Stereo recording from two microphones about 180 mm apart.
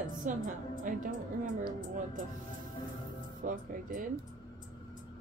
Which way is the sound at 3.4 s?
50° right (ahead or behind).